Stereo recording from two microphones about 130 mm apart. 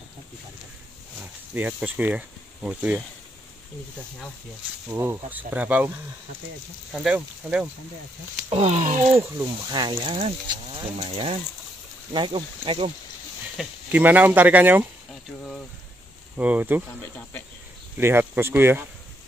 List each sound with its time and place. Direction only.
1.2 s speech: 15° right (ahead or behind)
4.8 s speech: 20° right (ahead or behind)
6.9 s speech: 5° right (ahead or behind)
8.5 s speech: 55° right (ahead or behind); by 9.2 s 70° right (ahead or behind)
9.2 s speech: 20° right (ahead or behind); by 12.9 s 45° right (ahead or behind)
13.6 s speech: centre (ahead or behind)
13.9 s speech: 15° right (ahead or behind)
16.3 s speech: 10° right (ahead or behind)
17.9 s speech: 15° right (ahead or behind)